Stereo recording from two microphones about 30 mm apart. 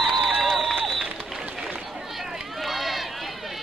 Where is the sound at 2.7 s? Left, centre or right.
Centre.